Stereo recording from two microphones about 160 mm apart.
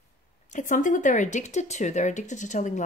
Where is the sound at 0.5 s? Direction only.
55° left (ahead or behind).